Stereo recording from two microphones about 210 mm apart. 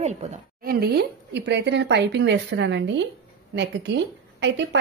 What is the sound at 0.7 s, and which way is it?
A woman's voice, 50° right (ahead or behind).